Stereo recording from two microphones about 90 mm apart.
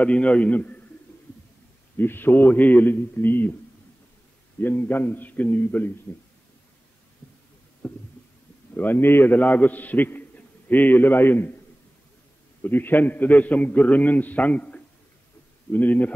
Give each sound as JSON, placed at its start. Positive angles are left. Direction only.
{"t": 0.0, "sound": "a man's voice", "side_deg": 15}
{"t": 2.0, "sound": "a man's voice", "side_deg": 25}
{"t": 4.6, "sound": "a man's voice", "side_deg": 20}
{"t": 7.8, "sound": "stomach rumble", "side_deg": 15}
{"t": 8.7, "sound": "a man's voice", "side_deg": 20}
{"t": 12.6, "sound": "a man's voice", "side_deg": 20}